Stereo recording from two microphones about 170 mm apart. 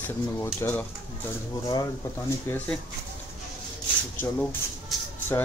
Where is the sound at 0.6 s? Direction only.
15° left (ahead or behind).